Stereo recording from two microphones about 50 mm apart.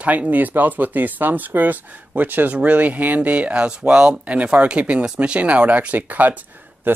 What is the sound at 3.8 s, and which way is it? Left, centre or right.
Speech, centre.